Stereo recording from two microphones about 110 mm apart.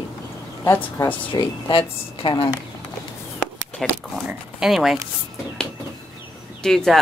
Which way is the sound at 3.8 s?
5° left (ahead or behind).